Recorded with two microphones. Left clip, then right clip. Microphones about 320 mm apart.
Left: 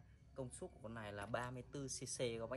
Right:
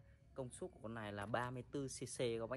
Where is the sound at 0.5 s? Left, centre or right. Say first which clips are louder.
Right 2 dB; centre.